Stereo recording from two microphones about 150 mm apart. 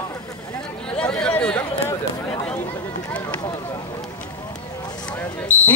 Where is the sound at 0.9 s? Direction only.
5° left (ahead or behind).